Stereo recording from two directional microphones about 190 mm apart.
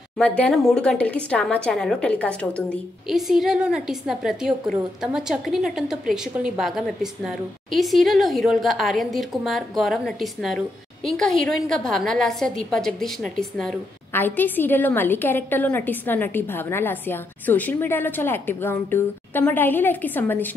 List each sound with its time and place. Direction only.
0.4 s a woman's voice: centre (ahead or behind)